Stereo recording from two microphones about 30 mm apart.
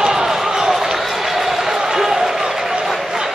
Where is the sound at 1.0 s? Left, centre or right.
Centre.